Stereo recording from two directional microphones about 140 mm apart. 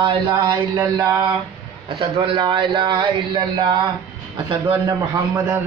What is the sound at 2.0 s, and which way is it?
Speech, 40° right (ahead or behind).